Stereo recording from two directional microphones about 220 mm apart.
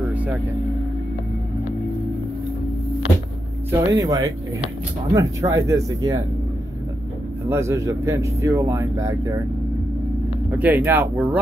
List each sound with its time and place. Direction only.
0.0 s vehicle: 5° right (ahead or behind)
3.7 s speech: 15° right (ahead or behind)
7.4 s speech: 10° right (ahead or behind)
10.5 s speech: 5° right (ahead or behind)